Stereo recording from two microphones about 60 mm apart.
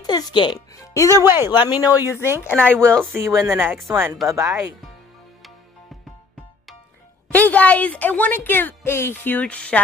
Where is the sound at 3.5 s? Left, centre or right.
Right.